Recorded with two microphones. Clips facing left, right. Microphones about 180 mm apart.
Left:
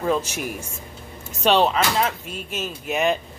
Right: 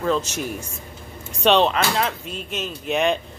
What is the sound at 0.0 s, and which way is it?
Speech, 10° left (ahead or behind).